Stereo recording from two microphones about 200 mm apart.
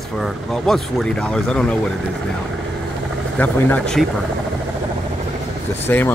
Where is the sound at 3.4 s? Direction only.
5° left (ahead or behind).